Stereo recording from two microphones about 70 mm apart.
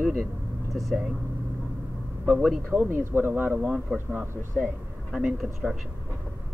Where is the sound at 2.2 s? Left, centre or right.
Centre.